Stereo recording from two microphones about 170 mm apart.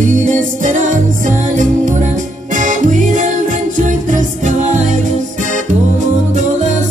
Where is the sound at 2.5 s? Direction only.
50° right (ahead or behind).